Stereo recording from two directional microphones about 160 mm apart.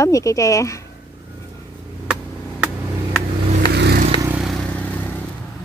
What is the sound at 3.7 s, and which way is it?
Vehicle, 90° right.